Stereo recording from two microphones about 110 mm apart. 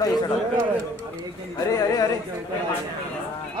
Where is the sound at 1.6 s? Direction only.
35° left (ahead or behind).